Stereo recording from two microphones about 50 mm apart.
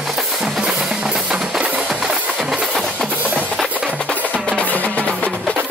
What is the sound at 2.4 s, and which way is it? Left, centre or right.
Music, centre.